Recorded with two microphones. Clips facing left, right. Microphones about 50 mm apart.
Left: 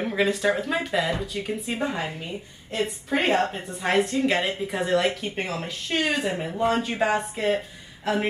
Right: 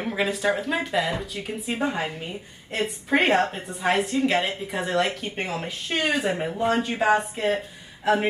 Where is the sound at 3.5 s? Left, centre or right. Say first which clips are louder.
Right 2 dB; centre.